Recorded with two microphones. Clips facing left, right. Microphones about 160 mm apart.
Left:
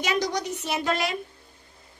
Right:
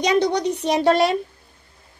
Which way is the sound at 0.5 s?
35° right (ahead or behind).